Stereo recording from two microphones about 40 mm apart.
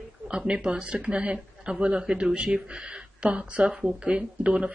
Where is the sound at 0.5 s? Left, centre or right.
Right.